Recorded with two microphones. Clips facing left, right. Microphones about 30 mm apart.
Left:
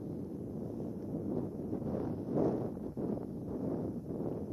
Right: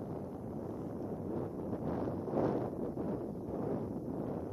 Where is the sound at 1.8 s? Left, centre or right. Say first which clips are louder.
Right 2 dB; right.